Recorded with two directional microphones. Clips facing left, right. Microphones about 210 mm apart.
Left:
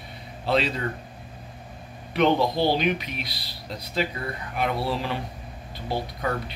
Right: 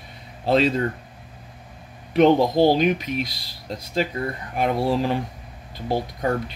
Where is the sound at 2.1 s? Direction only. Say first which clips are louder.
Right 5 dB; 45° right (ahead or behind).